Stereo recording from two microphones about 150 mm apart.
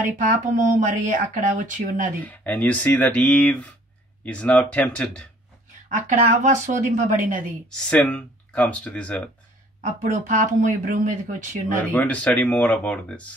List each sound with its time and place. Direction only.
0.2 s speech: 60° right (ahead or behind)
2.2 s speech: 10° left (ahead or behind)
5.9 s speech: 60° right (ahead or behind)
7.7 s speech: 10° left (ahead or behind)
10.0 s speech: 55° right (ahead or behind)
11.8 s speech: 10° left (ahead or behind)